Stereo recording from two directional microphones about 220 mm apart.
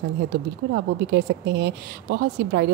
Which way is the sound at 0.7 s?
50° right (ahead or behind).